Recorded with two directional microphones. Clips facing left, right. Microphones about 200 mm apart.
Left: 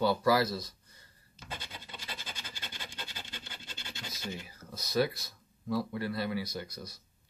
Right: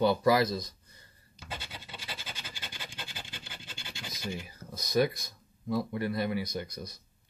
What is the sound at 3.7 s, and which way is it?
Scratch, 15° right (ahead or behind).